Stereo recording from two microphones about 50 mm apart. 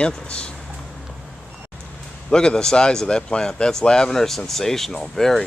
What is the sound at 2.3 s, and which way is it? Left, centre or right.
Speech, centre.